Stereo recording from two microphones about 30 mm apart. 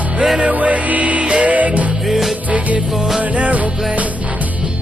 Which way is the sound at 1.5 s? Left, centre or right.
Right.